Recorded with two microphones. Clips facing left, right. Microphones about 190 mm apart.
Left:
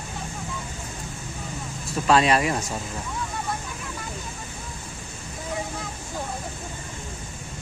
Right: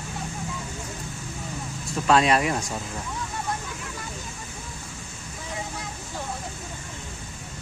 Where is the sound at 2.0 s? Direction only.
Centre (ahead or behind).